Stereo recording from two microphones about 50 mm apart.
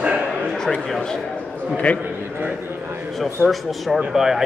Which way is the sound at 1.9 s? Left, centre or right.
Left.